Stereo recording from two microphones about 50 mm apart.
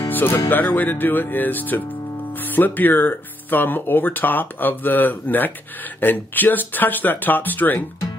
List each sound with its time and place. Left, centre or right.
0.1 s music: left
0.5 s speech: left